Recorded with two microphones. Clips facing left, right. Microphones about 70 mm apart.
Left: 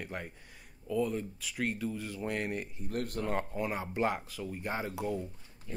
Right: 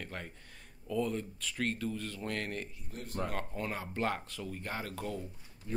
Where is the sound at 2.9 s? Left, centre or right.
Left.